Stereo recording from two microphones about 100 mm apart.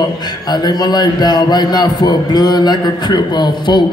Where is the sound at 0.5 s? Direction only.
45° left (ahead or behind).